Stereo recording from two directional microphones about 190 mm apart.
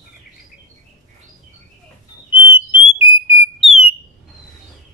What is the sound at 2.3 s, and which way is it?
Whistle, 25° left (ahead or behind).